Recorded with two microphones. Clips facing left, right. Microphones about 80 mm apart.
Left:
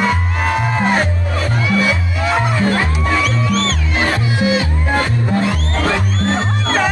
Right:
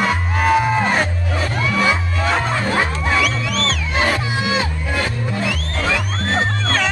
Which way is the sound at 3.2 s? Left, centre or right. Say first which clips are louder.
Left 3 dB; left.